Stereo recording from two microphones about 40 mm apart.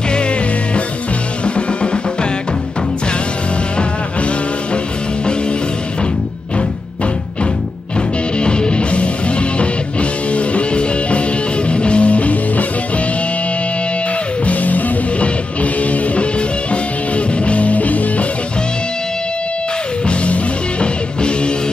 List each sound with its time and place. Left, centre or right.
8.4 s music: left
14.4 s music: left
20.8 s music: left